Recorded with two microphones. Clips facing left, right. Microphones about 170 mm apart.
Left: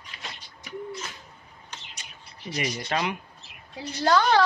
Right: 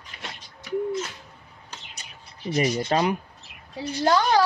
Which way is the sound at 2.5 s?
35° right (ahead or behind).